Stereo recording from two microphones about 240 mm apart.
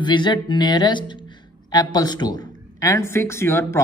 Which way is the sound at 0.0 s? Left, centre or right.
Centre.